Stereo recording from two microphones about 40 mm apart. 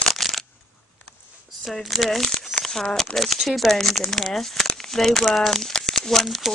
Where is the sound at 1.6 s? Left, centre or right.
Centre.